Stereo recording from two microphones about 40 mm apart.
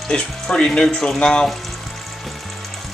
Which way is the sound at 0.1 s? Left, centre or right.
Centre.